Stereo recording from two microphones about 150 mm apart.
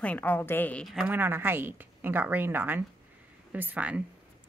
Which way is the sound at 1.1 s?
15° right (ahead or behind).